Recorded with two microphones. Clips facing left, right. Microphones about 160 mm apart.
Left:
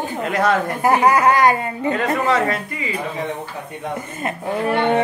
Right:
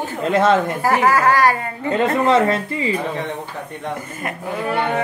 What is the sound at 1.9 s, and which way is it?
Speech, 25° right (ahead or behind).